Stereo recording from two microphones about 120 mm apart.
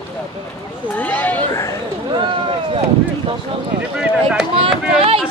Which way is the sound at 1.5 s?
25° left (ahead or behind).